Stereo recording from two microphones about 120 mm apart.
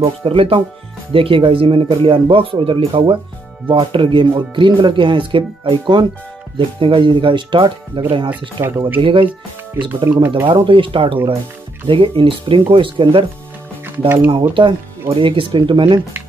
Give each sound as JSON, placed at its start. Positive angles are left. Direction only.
{"t": 0.0, "sound": "speech", "side_deg": -45}
{"t": 8.6, "sound": "speech", "side_deg": -20}
{"t": 9.0, "sound": "speech", "side_deg": -45}
{"t": 10.0, "sound": "speech", "side_deg": -20}
{"t": 10.4, "sound": "speech", "side_deg": -45}
{"t": 13.8, "sound": "speech", "side_deg": -15}
{"t": 14.5, "sound": "speech", "side_deg": -40}